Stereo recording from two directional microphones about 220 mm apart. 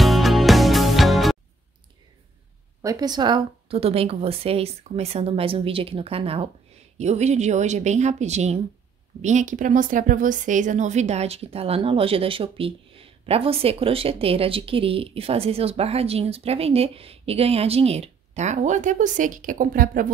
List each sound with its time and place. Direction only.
0.0 s music: centre (ahead or behind)
2.8 s a woman's voice: 15° right (ahead or behind); by 20.1 s 40° right (ahead or behind)